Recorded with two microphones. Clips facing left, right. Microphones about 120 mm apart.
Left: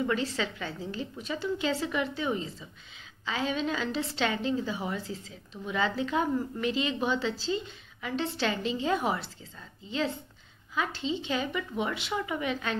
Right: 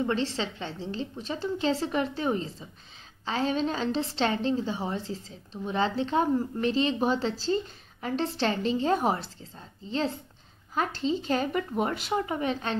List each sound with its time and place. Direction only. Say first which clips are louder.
0.0 s a woman's voice: right 1 dB; 30° right (ahead or behind)